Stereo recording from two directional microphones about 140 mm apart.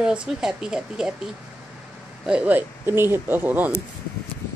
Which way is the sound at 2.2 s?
10° right (ahead or behind).